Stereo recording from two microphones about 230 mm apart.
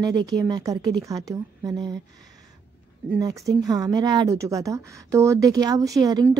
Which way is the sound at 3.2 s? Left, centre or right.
Centre.